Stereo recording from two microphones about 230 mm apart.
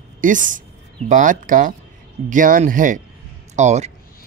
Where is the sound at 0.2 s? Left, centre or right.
Right.